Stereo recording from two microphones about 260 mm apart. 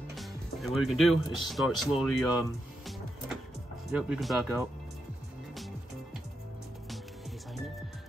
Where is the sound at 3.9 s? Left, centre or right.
Centre.